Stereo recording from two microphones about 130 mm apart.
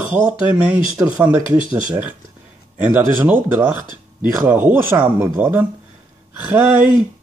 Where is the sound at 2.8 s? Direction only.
15° right (ahead or behind).